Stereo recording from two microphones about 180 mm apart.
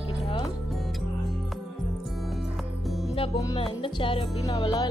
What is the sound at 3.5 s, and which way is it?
Music, 30° left (ahead or behind).